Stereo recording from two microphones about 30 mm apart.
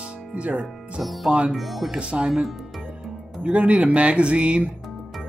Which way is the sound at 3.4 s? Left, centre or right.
Right.